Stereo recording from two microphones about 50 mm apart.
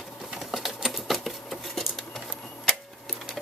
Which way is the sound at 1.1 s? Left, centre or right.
Centre.